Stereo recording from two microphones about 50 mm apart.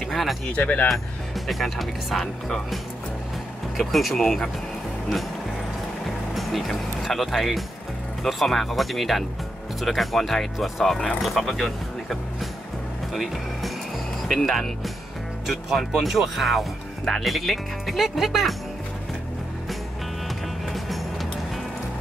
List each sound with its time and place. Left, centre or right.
0.0 s music: centre
0.5 s speech: left
0.8 s speech: centre
6.3 s speech: centre
20.7 s music: centre